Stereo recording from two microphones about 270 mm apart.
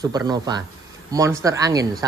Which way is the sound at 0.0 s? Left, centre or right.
Centre.